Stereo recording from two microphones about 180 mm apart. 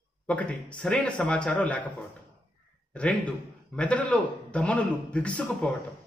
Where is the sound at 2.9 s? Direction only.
5° left (ahead or behind).